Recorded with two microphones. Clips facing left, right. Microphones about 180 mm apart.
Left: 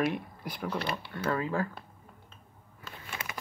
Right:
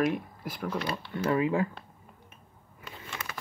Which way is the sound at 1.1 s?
20° right (ahead or behind).